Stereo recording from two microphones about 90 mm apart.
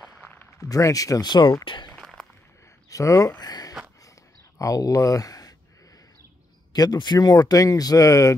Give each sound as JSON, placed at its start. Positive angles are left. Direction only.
{"t": 0.2, "sound": "a sound", "side_deg": 20}
{"t": 0.6, "sound": "speech", "side_deg": 40}
{"t": 1.6, "sound": "speech", "side_deg": 65}
{"t": 2.0, "sound": "a sound", "side_deg": 5}
{"t": 2.9, "sound": "speech", "side_deg": 35}
{"t": 6.7, "sound": "speech", "side_deg": 50}